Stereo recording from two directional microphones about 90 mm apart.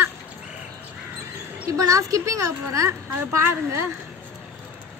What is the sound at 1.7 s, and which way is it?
A woman's voice, 40° right (ahead or behind).